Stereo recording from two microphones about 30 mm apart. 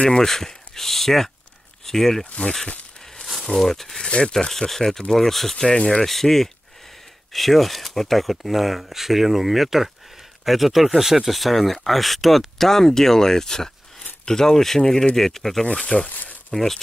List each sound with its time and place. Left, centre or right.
0.2 s speech: centre
3.4 s speech: centre
11.3 s speech: centre
15.6 s speech: left
16.1 s a sound: left
16.5 s speech: centre